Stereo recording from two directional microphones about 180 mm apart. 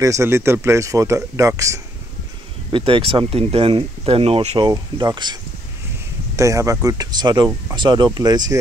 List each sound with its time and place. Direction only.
0.0 s speech: 15° right (ahead or behind)
2.7 s speech: 30° right (ahead or behind)
4.6 s speech: 25° right (ahead or behind)